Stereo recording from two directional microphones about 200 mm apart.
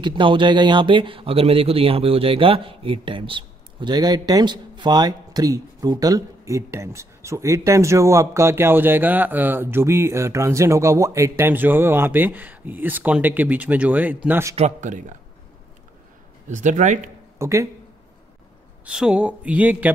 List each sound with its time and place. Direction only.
0.0 s speech: 25° right (ahead or behind)
14.5 s speech: 35° right (ahead or behind)
16.4 s speech: 40° right (ahead or behind)
17.4 s speech: 15° right (ahead or behind)
18.9 s speech: 5° right (ahead or behind)